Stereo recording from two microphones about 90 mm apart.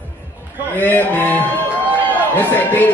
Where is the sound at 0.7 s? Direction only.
20° left (ahead or behind).